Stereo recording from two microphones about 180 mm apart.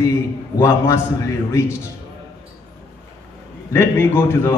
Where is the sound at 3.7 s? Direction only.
15° left (ahead or behind).